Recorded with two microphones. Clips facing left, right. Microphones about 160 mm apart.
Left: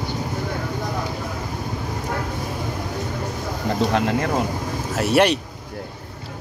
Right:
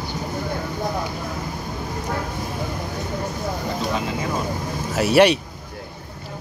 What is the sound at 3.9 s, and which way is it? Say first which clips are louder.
Vehicle: left 4 dB; 70° left (ahead or behind).